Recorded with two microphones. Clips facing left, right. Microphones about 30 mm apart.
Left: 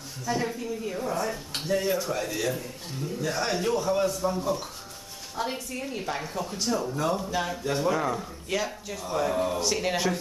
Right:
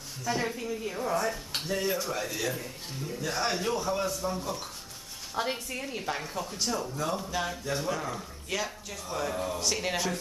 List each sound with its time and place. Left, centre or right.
0.2 s speech: centre
5.3 s speech: centre
5.8 s speech: centre